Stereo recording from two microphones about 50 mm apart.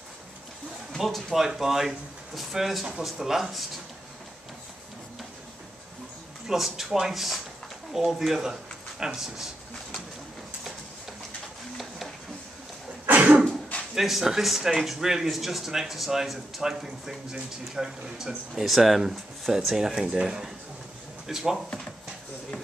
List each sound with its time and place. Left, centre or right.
0.9 s speech: centre
6.4 s speech: centre
13.1 s cough: right
13.9 s speech: centre